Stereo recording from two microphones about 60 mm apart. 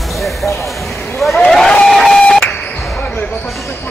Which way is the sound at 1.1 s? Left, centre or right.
Centre.